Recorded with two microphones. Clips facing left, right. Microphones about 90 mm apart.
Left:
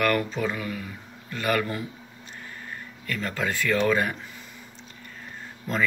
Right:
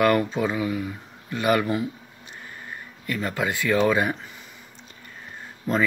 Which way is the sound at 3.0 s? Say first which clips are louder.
Right 3 dB; 10° right (ahead or behind).